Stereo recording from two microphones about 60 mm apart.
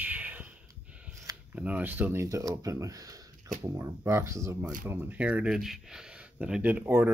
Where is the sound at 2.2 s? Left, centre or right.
Right.